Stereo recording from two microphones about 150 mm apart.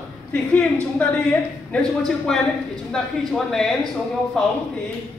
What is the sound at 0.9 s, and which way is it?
A woman's voice, 10° left (ahead or behind).